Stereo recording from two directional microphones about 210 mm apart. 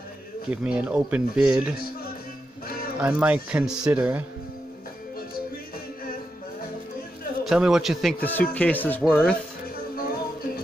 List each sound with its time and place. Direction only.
0.5 s speech: 5° right (ahead or behind)
3.0 s speech: 5° right (ahead or behind)
7.4 s speech: 5° right (ahead or behind)
9.9 s music: 45° left (ahead or behind)